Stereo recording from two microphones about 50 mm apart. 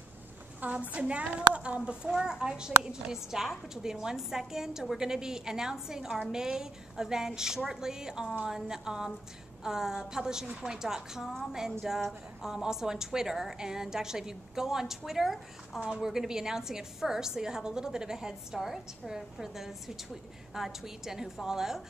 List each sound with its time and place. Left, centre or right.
0.6 s a woman's voice: right
2.0 s a woman's voice: centre